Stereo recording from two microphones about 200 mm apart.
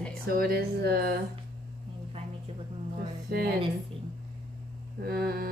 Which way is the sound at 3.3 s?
50° right (ahead or behind).